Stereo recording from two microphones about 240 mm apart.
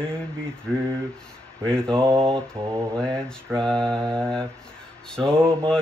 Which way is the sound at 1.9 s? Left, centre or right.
Right.